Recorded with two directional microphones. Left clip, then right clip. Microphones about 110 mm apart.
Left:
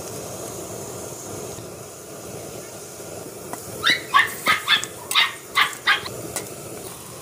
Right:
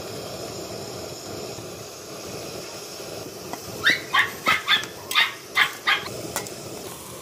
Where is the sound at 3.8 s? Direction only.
60° right (ahead or behind).